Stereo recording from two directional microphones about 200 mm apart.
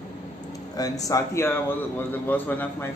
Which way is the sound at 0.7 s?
15° left (ahead or behind).